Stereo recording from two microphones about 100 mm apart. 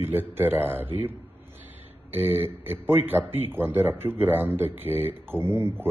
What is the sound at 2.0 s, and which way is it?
A man's voice, 20° right (ahead or behind).